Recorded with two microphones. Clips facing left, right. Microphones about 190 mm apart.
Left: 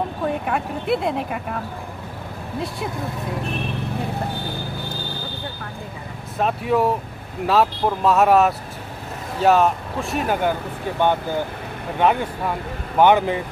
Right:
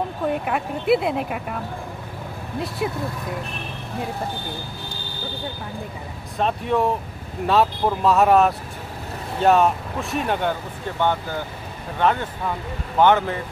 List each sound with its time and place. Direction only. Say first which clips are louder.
0.3 s speech: even; centre (ahead or behind)
6.3 s speech: left 1 dB; 5° left (ahead or behind)
11.0 s speech: left 3 dB; 15° left (ahead or behind)